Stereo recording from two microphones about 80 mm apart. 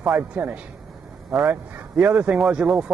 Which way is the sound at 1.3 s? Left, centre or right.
Centre.